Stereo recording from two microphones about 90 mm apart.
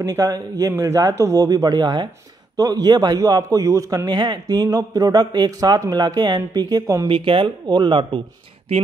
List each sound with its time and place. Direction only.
0.0 s a man's voice: 40° right (ahead or behind)
7.1 s speech: 70° right (ahead or behind)